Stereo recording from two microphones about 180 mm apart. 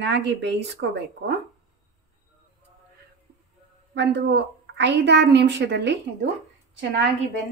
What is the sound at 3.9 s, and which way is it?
A woman's voice, 70° right (ahead or behind).